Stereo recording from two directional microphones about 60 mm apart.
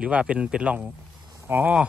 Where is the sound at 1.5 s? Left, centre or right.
Right.